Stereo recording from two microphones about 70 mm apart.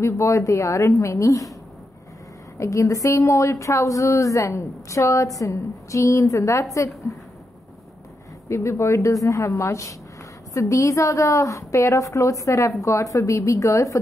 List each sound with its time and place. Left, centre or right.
0.0 s a woman's voice: left
2.5 s a woman's voice: left
8.5 s a woman's voice: left